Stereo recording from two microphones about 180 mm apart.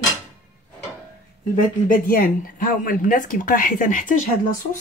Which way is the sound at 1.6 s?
50° left (ahead or behind).